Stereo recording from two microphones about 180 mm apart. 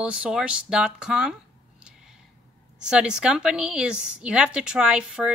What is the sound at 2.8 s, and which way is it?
A woman's voice, 5° right (ahead or behind).